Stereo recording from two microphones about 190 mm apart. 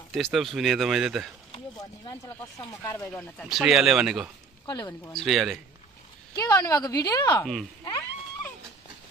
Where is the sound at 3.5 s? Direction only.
Centre (ahead or behind).